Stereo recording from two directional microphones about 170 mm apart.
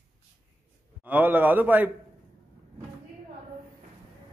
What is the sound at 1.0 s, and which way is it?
Speech, 10° right (ahead or behind).